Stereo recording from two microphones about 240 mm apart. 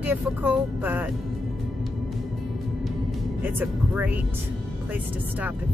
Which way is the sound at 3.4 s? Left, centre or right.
Centre.